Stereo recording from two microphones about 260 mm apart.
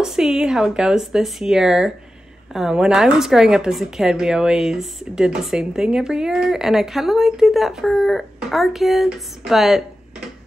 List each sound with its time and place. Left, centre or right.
0.0 s a woman's voice: centre